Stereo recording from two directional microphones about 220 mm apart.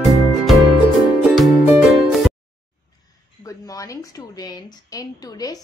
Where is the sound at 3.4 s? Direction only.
15° left (ahead or behind).